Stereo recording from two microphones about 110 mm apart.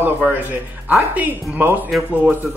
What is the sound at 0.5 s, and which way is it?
Speech, 15° right (ahead or behind).